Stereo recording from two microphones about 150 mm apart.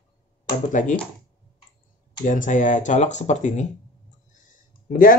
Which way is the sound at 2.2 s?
60° left (ahead or behind).